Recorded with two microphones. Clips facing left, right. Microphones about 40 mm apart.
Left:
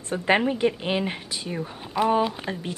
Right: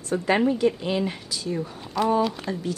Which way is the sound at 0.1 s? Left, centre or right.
Left.